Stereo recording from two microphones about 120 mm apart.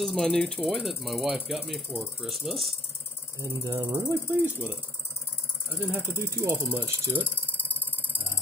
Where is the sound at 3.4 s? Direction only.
30° right (ahead or behind).